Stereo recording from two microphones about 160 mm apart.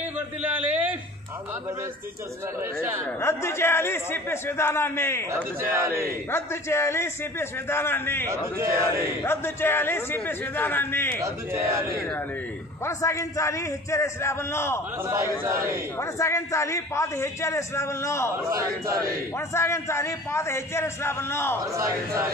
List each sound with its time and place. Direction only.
0.6 s a sound: 10° right (ahead or behind)
2.6 s speech: 15° right (ahead or behind)
3.2 s a man's voice: 15° left (ahead or behind)
5.3 s speech: 15° right (ahead or behind)
6.3 s a man's voice: 15° left (ahead or behind)
8.3 s speech: 20° right (ahead or behind)
9.2 s a man's voice: 15° left (ahead or behind)
11.1 s speech: 15° right (ahead or behind)
12.8 s a man's voice: 20° left (ahead or behind)
15.0 s speech: 15° right (ahead or behind)
16.0 s a man's voice: 20° left (ahead or behind)
18.5 s speech: 20° right (ahead or behind)
19.3 s a man's voice: 15° left (ahead or behind)
21.7 s speech: 20° right (ahead or behind)